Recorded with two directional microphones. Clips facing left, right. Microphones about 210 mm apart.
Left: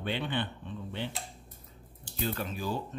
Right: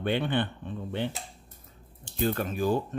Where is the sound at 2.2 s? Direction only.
50° right (ahead or behind).